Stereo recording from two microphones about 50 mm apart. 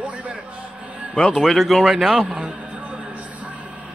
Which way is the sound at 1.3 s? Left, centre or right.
Centre.